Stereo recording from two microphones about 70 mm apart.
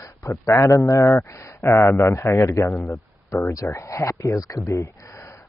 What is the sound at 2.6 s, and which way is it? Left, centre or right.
Speech, left.